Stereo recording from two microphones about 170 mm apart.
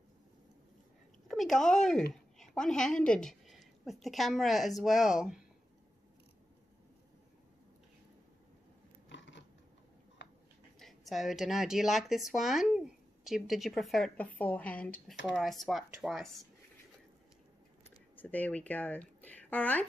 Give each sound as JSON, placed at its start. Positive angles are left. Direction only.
{"t": 1.2, "sound": "a woman's voice", "side_deg": 0}
{"t": 9.1, "sound": "a sound", "side_deg": 90}
{"t": 10.8, "sound": "speech", "side_deg": 0}
{"t": 17.8, "sound": "speech", "side_deg": 10}